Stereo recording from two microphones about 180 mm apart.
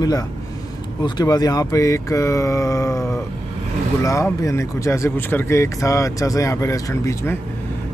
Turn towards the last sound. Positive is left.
turn(degrees=15)  # may be behind; listen again after turning